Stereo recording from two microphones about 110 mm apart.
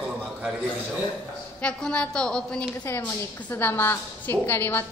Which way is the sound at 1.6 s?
10° left (ahead or behind).